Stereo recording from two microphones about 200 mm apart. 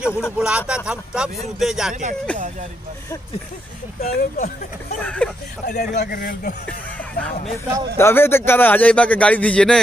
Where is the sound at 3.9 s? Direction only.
35° left (ahead or behind).